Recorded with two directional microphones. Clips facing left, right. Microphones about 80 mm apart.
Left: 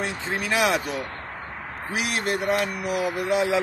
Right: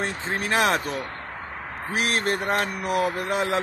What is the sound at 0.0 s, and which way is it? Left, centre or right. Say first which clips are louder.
Speech: even; right.